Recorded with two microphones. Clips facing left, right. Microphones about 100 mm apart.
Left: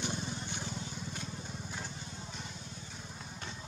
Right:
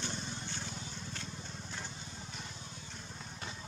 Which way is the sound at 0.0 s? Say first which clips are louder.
Left 3 dB; 15° left (ahead or behind).